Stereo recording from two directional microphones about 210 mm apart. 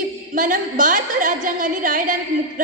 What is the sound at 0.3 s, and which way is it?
A woman's voice, 40° right (ahead or behind).